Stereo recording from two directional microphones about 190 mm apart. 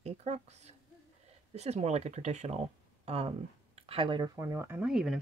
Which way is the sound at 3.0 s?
30° right (ahead or behind).